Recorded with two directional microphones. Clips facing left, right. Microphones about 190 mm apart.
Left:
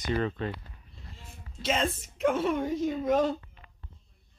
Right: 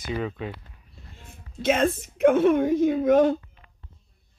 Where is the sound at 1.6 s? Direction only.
55° right (ahead or behind).